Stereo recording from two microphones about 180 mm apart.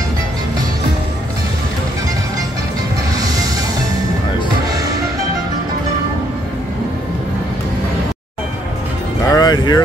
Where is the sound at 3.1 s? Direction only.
20° right (ahead or behind).